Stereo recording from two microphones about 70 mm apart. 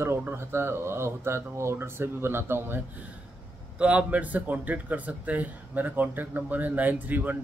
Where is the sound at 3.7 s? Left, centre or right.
Centre.